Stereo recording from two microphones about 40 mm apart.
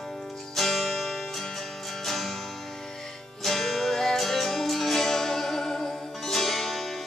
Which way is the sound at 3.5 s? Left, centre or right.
Centre.